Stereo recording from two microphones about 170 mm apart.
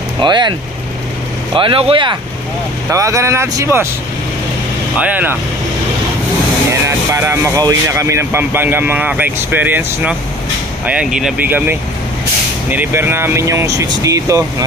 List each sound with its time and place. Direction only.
0.2 s speech: 25° right (ahead or behind)
2.9 s speech: 20° right (ahead or behind)
4.9 s speech: 10° right (ahead or behind)
6.7 s speech: 15° right (ahead or behind)